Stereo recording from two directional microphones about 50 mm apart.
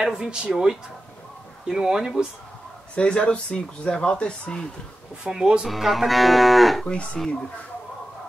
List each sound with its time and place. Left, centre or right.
0.0 s speech: centre
1.7 s speech: centre
3.0 s speech: left
5.2 s speech: centre
5.7 s livestock: centre